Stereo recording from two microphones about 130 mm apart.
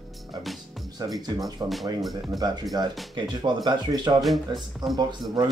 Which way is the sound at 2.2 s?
30° right (ahead or behind).